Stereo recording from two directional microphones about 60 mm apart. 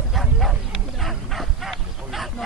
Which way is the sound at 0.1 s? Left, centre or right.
Centre.